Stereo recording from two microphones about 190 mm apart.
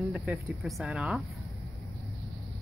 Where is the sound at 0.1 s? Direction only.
5° right (ahead or behind).